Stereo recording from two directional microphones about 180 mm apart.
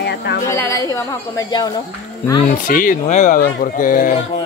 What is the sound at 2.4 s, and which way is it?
Speech, 50° left (ahead or behind).